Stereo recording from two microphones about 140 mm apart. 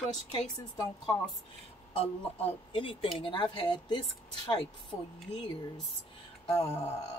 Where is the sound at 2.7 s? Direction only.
40° left (ahead or behind).